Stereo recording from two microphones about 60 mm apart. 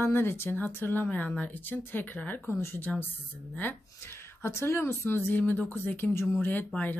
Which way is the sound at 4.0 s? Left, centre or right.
Left.